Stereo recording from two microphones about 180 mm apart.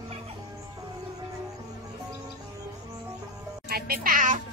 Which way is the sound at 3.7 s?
55° right (ahead or behind).